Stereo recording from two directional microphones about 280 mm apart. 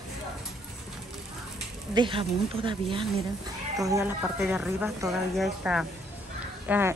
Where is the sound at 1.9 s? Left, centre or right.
Centre.